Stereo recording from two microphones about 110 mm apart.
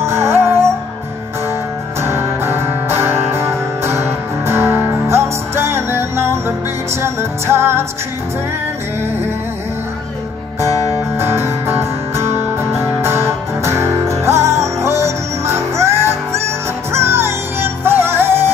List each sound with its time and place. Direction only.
0.0 s music: 25° right (ahead or behind)
2.0 s music: 25° right (ahead or behind)
11.1 s music: 20° right (ahead or behind)